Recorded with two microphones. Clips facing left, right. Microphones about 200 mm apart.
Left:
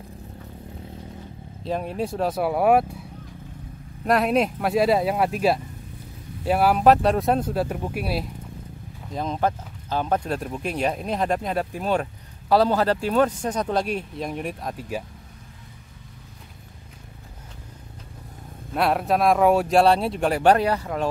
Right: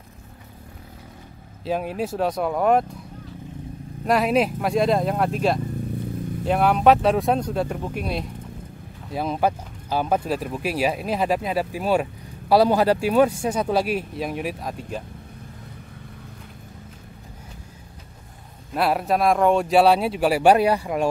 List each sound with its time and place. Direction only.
1.6 s speech: 5° right (ahead or behind)
4.0 s speech: centre (ahead or behind)
9.1 s speech: 10° right (ahead or behind)
18.7 s speech: centre (ahead or behind)